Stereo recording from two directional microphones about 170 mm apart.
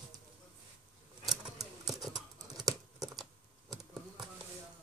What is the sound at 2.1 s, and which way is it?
Computer keyboard, 20° right (ahead or behind).